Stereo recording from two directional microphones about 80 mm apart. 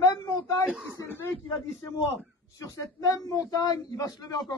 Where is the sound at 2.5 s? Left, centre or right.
Left.